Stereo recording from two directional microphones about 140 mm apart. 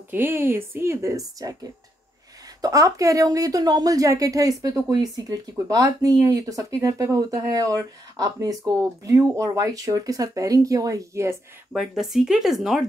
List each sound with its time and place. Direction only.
0.1 s a woman's voice: 15° right (ahead or behind)
11.7 s speech: centre (ahead or behind)